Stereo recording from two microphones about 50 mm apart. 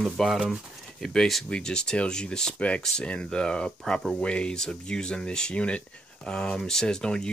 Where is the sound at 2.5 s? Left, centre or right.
Left.